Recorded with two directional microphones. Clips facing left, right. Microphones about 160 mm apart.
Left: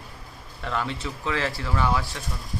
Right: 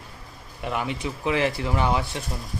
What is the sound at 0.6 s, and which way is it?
Speech, 15° right (ahead or behind).